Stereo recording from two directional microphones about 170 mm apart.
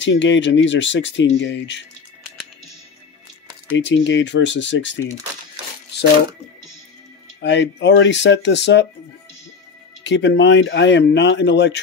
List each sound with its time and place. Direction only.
0.0 s speech: 90° left
3.7 s speech: 90° left
7.3 s speech: 90° left
10.0 s speech: 90° left